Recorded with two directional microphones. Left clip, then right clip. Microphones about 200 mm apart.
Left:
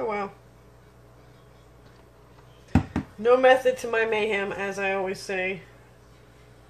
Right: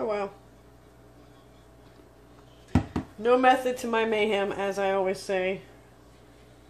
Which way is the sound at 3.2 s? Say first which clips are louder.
Left 3 dB; 15° right (ahead or behind).